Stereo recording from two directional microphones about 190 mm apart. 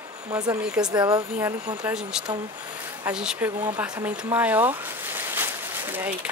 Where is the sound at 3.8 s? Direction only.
10° right (ahead or behind).